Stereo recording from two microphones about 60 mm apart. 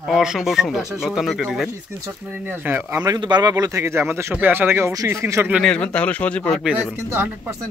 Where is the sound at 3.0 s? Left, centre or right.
Right.